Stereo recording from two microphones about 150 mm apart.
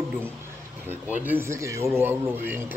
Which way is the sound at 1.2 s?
15° right (ahead or behind).